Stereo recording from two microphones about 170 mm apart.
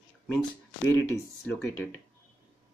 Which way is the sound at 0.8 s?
15° left (ahead or behind).